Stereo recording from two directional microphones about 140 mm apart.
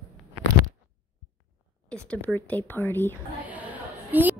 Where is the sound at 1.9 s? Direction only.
5° left (ahead or behind).